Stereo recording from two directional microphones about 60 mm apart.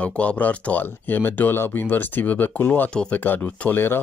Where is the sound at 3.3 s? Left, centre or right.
Left.